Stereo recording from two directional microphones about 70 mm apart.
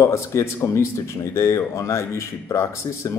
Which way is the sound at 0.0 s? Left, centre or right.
Left.